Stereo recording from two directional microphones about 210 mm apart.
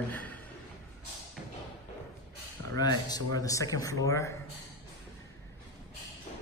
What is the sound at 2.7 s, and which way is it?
Speech, 20° left (ahead or behind).